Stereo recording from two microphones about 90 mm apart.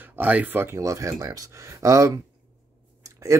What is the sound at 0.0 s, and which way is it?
Speech, 20° right (ahead or behind).